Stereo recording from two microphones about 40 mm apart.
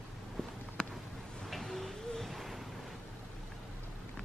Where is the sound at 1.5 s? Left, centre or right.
Centre.